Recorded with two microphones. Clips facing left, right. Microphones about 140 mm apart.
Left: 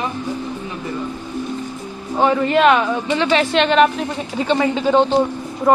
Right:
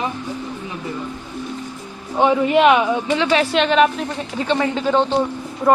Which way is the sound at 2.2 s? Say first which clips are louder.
Even; 10° right (ahead or behind).